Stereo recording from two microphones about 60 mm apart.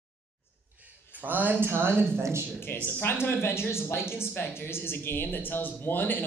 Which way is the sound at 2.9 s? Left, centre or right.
Left.